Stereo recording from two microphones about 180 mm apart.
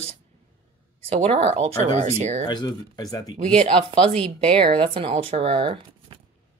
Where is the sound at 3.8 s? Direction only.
30° right (ahead or behind).